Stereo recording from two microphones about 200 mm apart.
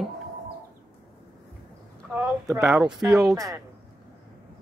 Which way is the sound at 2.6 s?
Centre (ahead or behind).